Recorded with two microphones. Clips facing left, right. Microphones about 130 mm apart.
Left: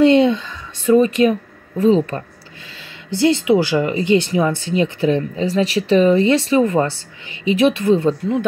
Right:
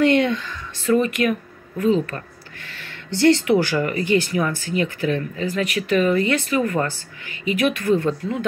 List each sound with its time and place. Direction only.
0.0 s speech: 20° left (ahead or behind)
2.8 s speech: 15° left (ahead or behind)